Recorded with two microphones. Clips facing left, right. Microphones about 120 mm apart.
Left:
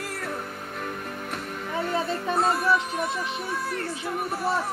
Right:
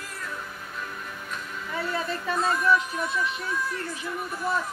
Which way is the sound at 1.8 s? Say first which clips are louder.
Left 3 dB; 25° left (ahead or behind).